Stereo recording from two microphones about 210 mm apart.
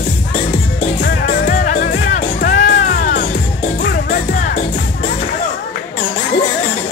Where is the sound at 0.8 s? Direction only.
45° left (ahead or behind).